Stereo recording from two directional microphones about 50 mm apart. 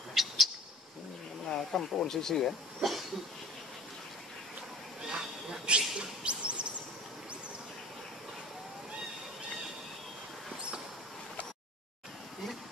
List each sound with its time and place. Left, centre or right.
0.1 s bird: centre
1.5 s speech: centre
2.8 s cough: centre
5.0 s bird: centre